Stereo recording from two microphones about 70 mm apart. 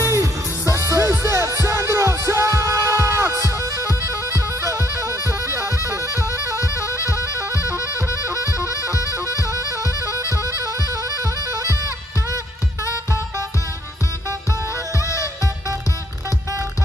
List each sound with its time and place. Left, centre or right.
0.0 s music: right
4.3 s bagpipes: right
5.4 s music: right
6.2 s music: left
10.6 s music: right
15.0 s music: left